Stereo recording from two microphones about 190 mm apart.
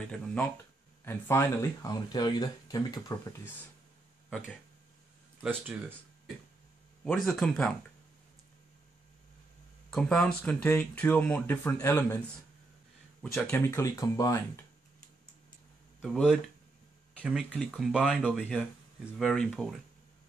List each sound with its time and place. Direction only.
0.0 s speech: 5° left (ahead or behind); by 3.2 s 20° left (ahead or behind)
5.4 s speech: 10° right (ahead or behind)
7.1 s speech: centre (ahead or behind)
9.8 s speech: 5° left (ahead or behind)
13.2 s speech: 10° left (ahead or behind)
16.0 s speech: centre (ahead or behind)